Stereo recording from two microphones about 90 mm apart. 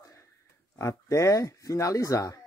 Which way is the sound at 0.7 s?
35° left (ahead or behind).